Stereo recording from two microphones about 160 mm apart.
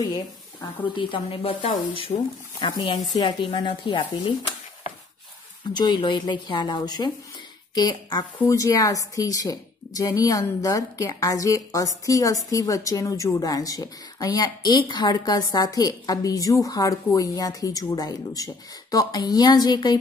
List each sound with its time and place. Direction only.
0.9 s speech: 35° left (ahead or behind)
5.7 s a woman's voice: 30° left (ahead or behind)